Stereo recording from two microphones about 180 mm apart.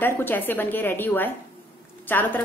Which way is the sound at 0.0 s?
10° left (ahead or behind).